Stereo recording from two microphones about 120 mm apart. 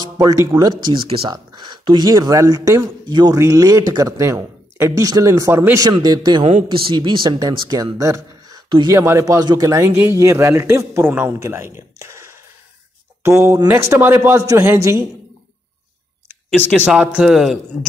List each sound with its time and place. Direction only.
0.0 s speech: 30° right (ahead or behind)
0.9 s speech: 55° right (ahead or behind)
1.3 s a man's voice: 40° right (ahead or behind)
7.3 s speech: 30° right (ahead or behind)
8.9 s a man's voice: 25° right (ahead or behind)
16.8 s a man's voice: 10° right (ahead or behind)